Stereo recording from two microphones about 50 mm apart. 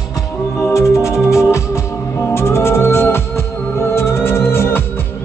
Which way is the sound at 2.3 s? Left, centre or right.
Left.